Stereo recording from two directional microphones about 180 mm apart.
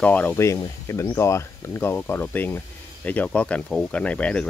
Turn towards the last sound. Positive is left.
turn(degrees=5)  # may be behind; listen again after turning